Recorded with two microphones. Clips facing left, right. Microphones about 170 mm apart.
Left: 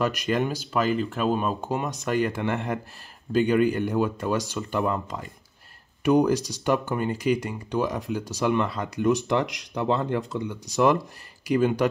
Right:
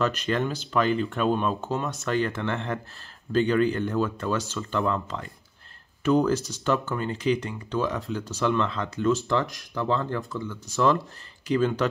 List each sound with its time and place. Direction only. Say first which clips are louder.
0.0 s speech: left 1 dB; 10° left (ahead or behind)